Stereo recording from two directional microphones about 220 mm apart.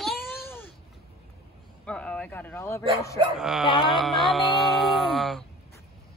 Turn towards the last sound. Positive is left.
turn(degrees=0)  # may be behind; listen again after turning